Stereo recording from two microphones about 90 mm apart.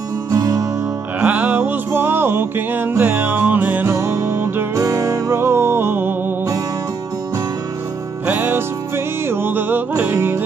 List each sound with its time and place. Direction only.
0.3 s music: 45° right (ahead or behind)
1.2 s music: 15° right (ahead or behind)
4.7 s music: 40° right (ahead or behind)
8.3 s music: 20° right (ahead or behind)